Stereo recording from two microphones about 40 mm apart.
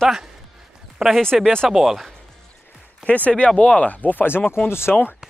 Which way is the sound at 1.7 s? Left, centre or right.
Centre.